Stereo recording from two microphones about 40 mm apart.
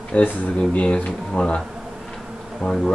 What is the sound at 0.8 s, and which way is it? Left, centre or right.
Speech, left.